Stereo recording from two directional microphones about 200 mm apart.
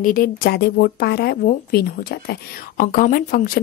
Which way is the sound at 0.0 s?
45° left (ahead or behind).